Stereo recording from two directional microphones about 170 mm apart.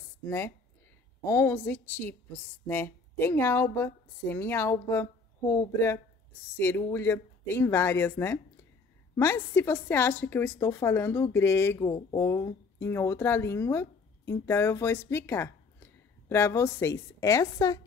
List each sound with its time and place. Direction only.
0.2 s a woman's voice: 15° left (ahead or behind)